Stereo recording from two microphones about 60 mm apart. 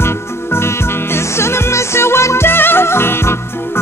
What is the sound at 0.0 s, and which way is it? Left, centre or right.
Music, left.